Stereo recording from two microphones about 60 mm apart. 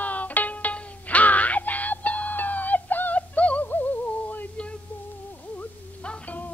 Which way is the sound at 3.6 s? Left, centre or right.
Left.